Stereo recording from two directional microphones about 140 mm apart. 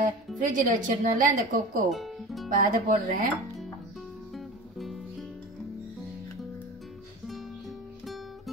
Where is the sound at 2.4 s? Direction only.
75° right (ahead or behind).